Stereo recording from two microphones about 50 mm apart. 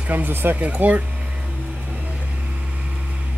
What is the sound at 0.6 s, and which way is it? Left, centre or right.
Speech, right.